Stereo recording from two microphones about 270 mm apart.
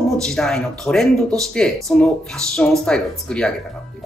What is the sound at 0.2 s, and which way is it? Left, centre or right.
A woman's voice, centre.